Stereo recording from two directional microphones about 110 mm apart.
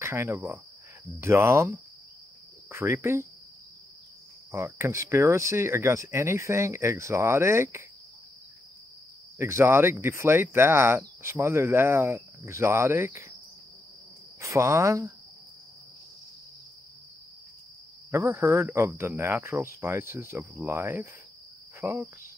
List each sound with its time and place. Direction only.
0.0 s speech: 25° right (ahead or behind)
4.5 s speech: 25° right (ahead or behind)
9.4 s speech: 25° right (ahead or behind)
14.4 s speech: 25° right (ahead or behind)
18.1 s speech: 25° right (ahead or behind)
21.8 s insect: 15° right (ahead or behind)